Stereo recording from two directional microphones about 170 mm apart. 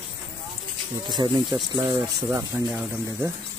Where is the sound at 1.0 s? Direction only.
25° right (ahead or behind); by 3.3 s 10° right (ahead or behind).